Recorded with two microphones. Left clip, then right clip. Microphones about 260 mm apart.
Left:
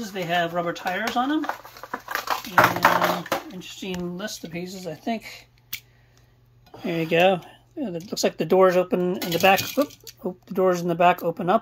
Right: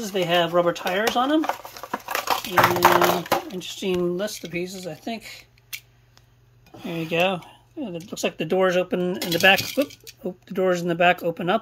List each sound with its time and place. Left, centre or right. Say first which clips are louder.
0.1 s speech: right 4 dB; centre
1.4 s crumpling: right 3 dB; right
3.5 s speech: right 8 dB; centre
4.4 s speech: right 4 dB; centre
6.8 s speech: left 3 dB; centre